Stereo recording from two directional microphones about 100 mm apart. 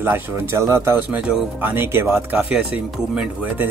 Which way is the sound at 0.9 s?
15° right (ahead or behind).